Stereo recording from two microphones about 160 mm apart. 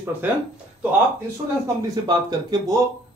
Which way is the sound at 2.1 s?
25° right (ahead or behind).